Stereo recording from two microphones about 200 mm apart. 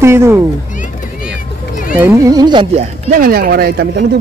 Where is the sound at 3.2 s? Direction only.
45° right (ahead or behind).